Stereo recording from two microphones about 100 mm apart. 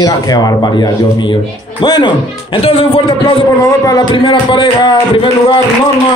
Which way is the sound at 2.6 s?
75° left (ahead or behind).